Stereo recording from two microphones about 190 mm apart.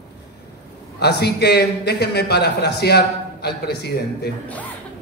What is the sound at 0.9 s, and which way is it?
A man's voice, 60° left (ahead or behind).